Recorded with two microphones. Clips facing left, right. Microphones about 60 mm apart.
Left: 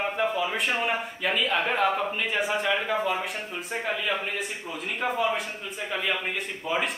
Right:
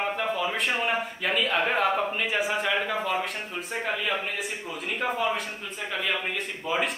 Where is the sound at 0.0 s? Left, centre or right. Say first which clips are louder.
Left 1 dB; centre.